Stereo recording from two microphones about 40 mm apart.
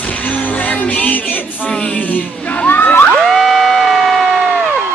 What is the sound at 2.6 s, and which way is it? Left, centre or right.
Crowd, left.